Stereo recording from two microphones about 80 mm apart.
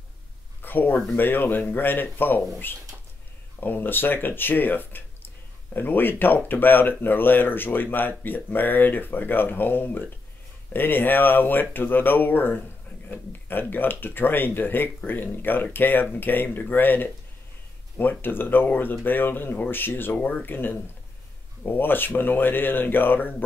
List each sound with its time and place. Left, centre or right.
0.6 s a sound: left
1.1 s speech: left
3.6 s speech: left